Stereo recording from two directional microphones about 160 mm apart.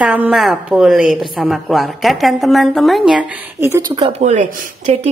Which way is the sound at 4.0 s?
45° right (ahead or behind).